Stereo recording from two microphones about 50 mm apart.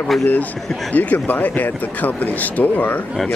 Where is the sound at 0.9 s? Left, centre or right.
Left.